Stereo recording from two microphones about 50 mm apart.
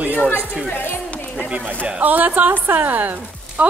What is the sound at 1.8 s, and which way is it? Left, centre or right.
Speech, right.